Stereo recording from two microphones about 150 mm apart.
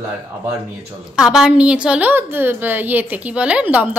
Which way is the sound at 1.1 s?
5° right (ahead or behind).